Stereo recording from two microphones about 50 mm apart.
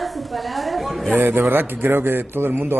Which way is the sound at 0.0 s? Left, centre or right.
Centre.